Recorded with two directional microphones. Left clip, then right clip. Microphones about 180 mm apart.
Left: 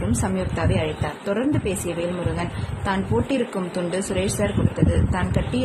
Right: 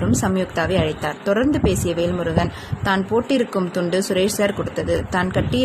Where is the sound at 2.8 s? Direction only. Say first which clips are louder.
Right 4 dB; 25° right (ahead or behind).